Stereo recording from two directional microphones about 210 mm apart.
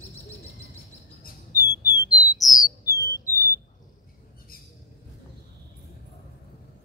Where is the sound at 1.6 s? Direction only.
10° right (ahead or behind).